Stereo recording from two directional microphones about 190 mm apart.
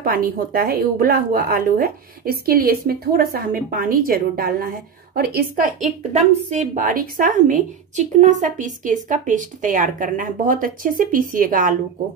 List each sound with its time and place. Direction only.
0.0 s a woman's voice: 50° right (ahead or behind)